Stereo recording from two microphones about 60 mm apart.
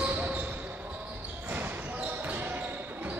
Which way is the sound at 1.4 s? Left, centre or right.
Right.